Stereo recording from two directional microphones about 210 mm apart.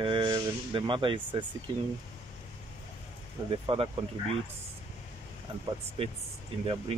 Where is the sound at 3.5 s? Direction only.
25° right (ahead or behind).